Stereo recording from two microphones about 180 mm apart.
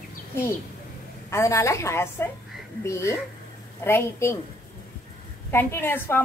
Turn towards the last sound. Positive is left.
turn(degrees=10)  # may be behind; listen again after turning